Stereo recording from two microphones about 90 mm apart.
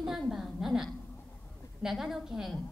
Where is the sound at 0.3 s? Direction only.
5° right (ahead or behind).